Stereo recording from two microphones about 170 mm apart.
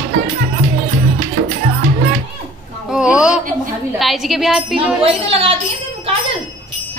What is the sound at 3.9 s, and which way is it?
A woman's voice, centre (ahead or behind).